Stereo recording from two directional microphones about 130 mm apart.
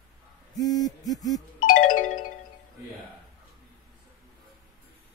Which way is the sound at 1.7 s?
90° left.